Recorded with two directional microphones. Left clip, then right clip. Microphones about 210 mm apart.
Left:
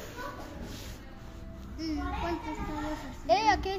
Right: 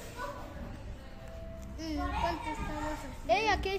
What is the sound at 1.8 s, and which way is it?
Music, 35° right (ahead or behind).